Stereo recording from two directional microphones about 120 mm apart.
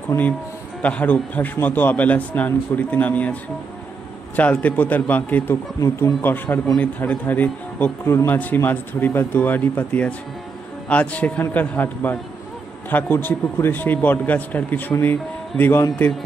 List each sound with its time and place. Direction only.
0.1 s speech: 25° left (ahead or behind)
0.8 s speech: 10° left (ahead or behind)
4.4 s speech: 10° left (ahead or behind)